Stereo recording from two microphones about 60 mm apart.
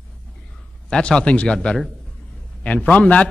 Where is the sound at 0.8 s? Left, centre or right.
Centre.